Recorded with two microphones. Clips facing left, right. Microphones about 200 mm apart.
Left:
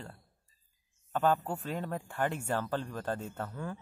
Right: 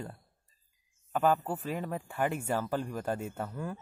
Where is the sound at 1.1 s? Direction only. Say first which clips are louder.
Right 1 dB; 5° right (ahead or behind).